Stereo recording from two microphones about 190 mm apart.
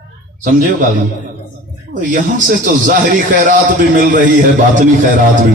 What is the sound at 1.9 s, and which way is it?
A man's voice, 45° right (ahead or behind).